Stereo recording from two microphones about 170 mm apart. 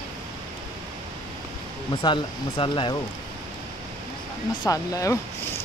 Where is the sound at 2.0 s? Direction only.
25° left (ahead or behind).